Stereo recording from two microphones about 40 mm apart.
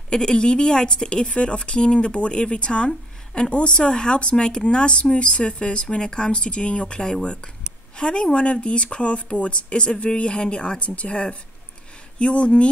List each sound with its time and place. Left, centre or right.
0.1 s speech: left
8.0 s speech: left